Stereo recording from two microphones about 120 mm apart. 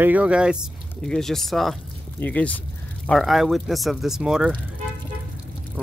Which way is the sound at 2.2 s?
10° left (ahead or behind).